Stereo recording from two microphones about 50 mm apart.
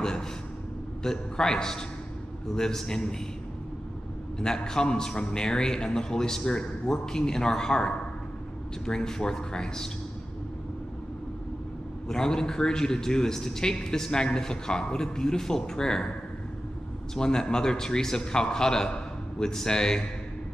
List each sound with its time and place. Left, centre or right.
0.0 s a man's voice: centre
4.4 s a man's voice: centre
12.1 s a man's voice: centre
17.1 s a man's voice: centre